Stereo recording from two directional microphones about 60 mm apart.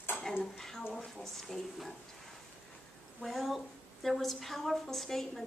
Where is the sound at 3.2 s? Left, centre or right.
Centre.